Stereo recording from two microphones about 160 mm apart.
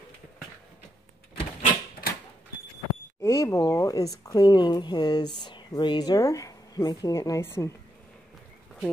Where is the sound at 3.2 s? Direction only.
20° left (ahead or behind).